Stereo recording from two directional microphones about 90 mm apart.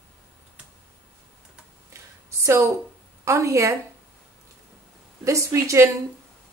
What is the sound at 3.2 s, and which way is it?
Speech, 35° right (ahead or behind).